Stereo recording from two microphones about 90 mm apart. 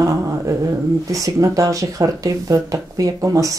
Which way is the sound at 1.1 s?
40° right (ahead or behind).